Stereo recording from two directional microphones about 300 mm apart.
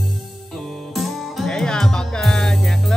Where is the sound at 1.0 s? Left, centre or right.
Centre.